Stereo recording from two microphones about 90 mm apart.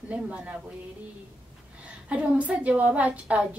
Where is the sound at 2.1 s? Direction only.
15° right (ahead or behind).